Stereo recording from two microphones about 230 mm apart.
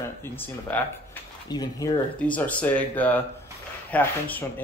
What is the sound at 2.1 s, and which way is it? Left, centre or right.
A man's voice, centre.